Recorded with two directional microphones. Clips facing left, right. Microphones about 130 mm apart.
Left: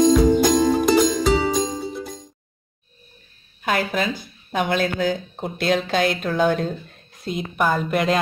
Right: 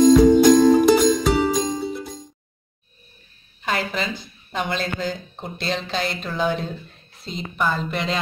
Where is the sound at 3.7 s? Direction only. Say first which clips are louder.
Left 3 dB; 55° left (ahead or behind).